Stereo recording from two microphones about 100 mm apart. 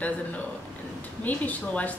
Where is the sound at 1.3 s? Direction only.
15° left (ahead or behind).